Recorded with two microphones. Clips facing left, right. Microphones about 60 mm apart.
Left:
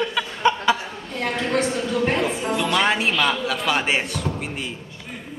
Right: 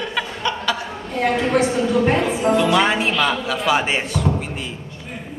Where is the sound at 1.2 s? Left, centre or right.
Centre.